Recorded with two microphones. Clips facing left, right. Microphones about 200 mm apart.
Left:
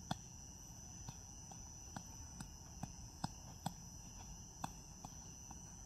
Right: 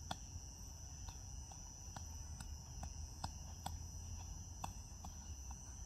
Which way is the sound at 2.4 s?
10° left (ahead or behind).